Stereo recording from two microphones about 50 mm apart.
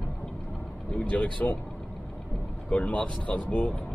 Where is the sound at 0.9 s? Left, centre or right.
Left.